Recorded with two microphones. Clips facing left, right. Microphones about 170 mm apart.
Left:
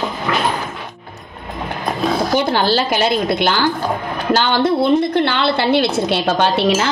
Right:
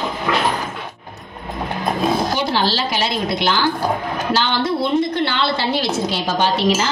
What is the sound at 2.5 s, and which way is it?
A woman's voice, 50° left (ahead or behind).